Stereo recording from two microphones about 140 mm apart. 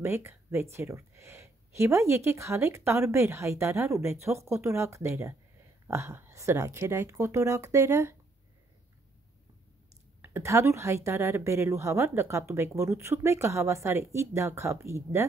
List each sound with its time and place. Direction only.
0.0 s speech: 15° right (ahead or behind)
10.2 s speech: 20° right (ahead or behind)